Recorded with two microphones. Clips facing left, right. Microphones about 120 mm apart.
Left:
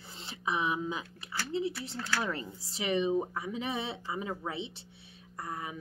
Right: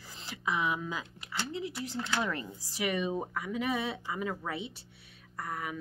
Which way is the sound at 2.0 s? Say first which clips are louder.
Right 3 dB; 20° right (ahead or behind).